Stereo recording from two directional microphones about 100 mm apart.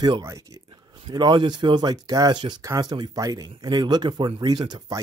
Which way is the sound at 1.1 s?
45° right (ahead or behind).